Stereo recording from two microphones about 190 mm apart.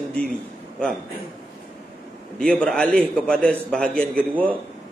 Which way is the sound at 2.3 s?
5° left (ahead or behind).